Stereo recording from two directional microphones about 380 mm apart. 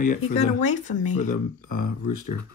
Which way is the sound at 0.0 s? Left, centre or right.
Centre.